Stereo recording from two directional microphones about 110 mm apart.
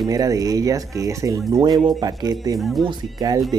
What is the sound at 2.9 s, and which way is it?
Speech, 35° right (ahead or behind).